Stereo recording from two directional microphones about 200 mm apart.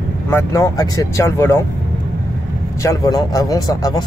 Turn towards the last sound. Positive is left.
turn(degrees=20)  # may be behind; listen again after turning